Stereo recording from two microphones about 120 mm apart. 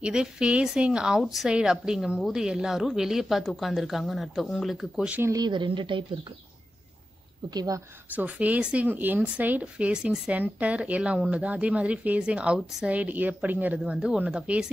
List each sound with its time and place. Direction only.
0.0 s a woman's voice: 5° right (ahead or behind)
5.2 s speech: 30° right (ahead or behind)
7.5 s speech: 30° right (ahead or behind)
8.1 s speech: 15° right (ahead or behind)